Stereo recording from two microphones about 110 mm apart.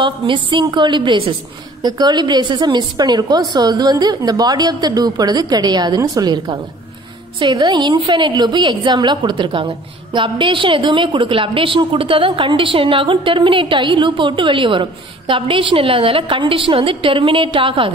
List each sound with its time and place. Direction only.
0.0 s a woman's voice: 45° right (ahead or behind)